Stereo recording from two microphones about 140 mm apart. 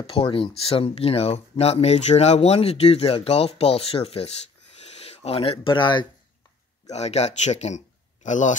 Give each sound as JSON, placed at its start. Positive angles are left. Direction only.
{"t": 0.0, "sound": "speech", "side_deg": 40}
{"t": 6.9, "sound": "speech", "side_deg": 50}